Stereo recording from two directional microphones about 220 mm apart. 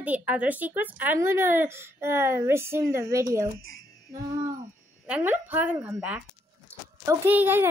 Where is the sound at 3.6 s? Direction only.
65° left (ahead or behind).